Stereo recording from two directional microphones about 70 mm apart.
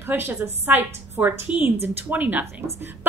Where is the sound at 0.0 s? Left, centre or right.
Right.